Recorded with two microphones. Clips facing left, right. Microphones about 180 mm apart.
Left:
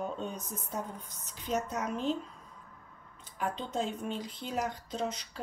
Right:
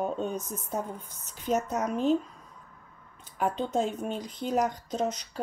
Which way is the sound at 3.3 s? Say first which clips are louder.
Right 6 dB; 45° right (ahead or behind).